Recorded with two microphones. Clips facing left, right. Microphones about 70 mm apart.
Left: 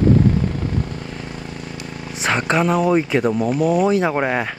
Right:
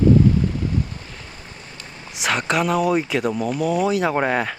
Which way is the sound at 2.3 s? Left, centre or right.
Left.